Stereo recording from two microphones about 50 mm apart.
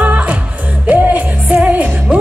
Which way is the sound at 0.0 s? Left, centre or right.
Right.